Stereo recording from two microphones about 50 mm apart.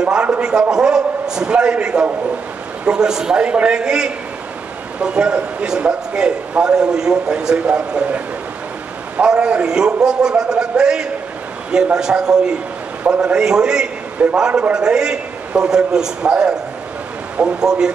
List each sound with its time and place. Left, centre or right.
0.0 s a man's voice: centre
9.2 s a man's voice: centre
14.7 s a man's voice: centre
17.6 s a man's voice: centre